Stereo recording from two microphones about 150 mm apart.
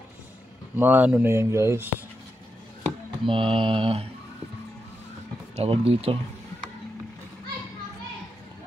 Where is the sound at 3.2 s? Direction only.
35° right (ahead or behind).